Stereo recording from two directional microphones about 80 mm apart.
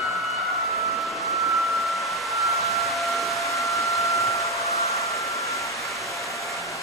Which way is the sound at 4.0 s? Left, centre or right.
Left.